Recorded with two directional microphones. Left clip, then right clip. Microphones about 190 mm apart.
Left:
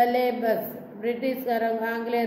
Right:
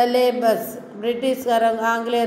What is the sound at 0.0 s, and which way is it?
A woman's voice, 20° right (ahead or behind).